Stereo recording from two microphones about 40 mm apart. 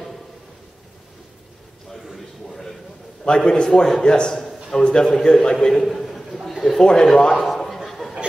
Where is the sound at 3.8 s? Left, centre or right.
Centre.